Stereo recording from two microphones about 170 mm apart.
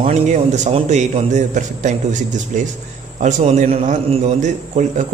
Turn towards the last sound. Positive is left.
turn(degrees=-45)  # may be behind; listen again after turning